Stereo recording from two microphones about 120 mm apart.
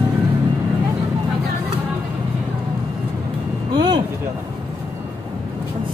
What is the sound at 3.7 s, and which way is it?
Vehicle, 40° right (ahead or behind).